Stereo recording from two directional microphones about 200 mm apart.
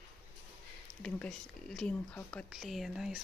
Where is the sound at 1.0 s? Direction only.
5° left (ahead or behind).